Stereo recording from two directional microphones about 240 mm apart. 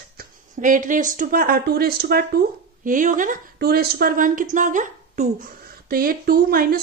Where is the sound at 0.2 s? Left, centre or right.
Right.